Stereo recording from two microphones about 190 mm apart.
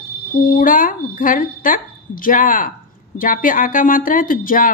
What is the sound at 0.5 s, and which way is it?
A woman's voice, 45° left (ahead or behind).